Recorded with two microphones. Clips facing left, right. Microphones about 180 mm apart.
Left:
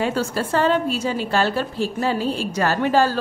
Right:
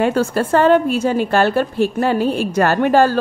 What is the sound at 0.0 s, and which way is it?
A woman's voice, 55° right (ahead or behind).